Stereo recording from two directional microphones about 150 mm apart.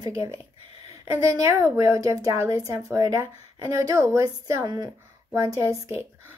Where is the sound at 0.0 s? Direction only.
20° right (ahead or behind).